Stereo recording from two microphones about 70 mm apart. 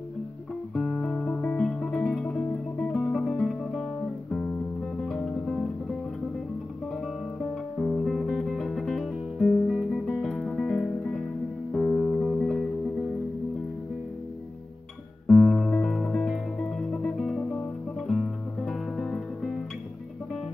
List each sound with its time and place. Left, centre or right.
0.7 s guitar: centre
3.1 s music: centre
4.3 s music: left
5.4 s music: centre
7.8 s music: centre
11.7 s music: centre
15.2 s guitar: centre
15.5 s music: centre